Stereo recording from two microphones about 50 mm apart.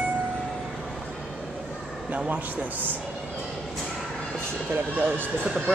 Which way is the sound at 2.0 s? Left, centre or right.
Right.